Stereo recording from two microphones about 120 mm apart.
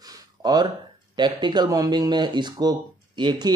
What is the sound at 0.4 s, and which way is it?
Speech, 35° right (ahead or behind).